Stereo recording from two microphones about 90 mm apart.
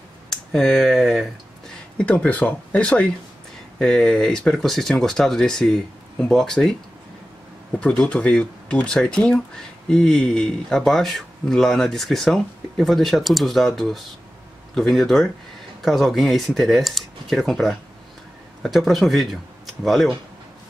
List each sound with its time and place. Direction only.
0.3 s speech: 5° left (ahead or behind)
2.0 s speech: 15° left (ahead or behind)
7.8 s speech: 10° left (ahead or behind)